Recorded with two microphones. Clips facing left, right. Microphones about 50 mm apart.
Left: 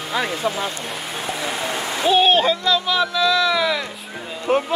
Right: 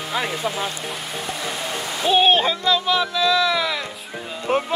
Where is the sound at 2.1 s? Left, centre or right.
Centre.